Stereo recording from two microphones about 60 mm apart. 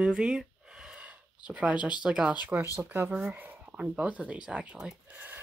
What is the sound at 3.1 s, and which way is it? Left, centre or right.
Speech, right.